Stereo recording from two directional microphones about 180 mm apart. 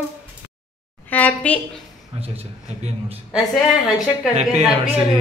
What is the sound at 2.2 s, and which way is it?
A man's voice, 35° right (ahead or behind).